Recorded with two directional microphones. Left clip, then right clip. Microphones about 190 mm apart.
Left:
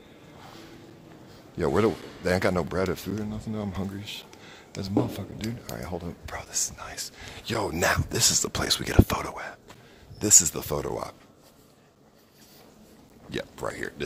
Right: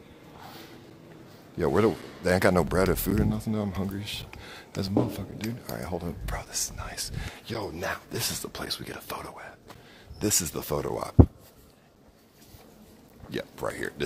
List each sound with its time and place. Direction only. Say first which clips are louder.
0.4 s a sound: right 2 dB; 15° right (ahead or behind)
1.6 s speech: even; centre (ahead or behind); by 3.0 s 15° right (ahead or behind)
3.0 s speech: right 5 dB; 30° right (ahead or behind)
3.6 s speech: right 1 dB; 5° right (ahead or behind)
4.0 s whispering: right 2 dB; 15° right (ahead or behind)
4.9 s speech: left 1 dB; centre (ahead or behind)
7.4 s speech: left 8 dB; 25° left (ahead or behind)
10.1 s speech: left 6 dB; centre (ahead or behind)
13.3 s speech: even; centre (ahead or behind)